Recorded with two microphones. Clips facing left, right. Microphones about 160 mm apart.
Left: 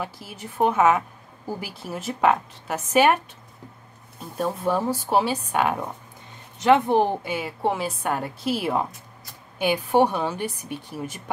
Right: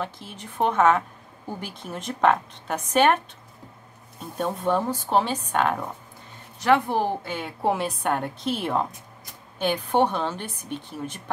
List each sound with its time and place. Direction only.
0.0 s a woman's voice: 10° left (ahead or behind)
4.4 s a woman's voice: 5° left (ahead or behind)
6.6 s speech: 20° left (ahead or behind)
7.3 s a woman's voice: centre (ahead or behind)